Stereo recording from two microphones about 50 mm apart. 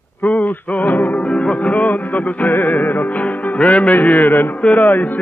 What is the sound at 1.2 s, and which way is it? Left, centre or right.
Music, left.